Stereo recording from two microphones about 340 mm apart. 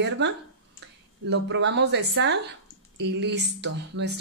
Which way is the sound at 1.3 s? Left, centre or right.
Right.